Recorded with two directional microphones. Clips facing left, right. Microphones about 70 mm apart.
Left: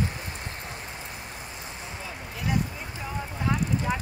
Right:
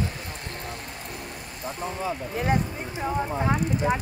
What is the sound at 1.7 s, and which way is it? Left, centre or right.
Speech, right.